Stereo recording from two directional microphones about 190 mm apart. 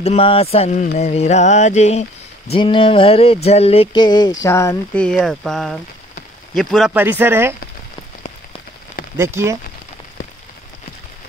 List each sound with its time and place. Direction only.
0.0 s a sound: 30° left (ahead or behind)
3.4 s speech: 30° left (ahead or behind); by 7.5 s 10° right (ahead or behind)
9.2 s speech: 15° right (ahead or behind)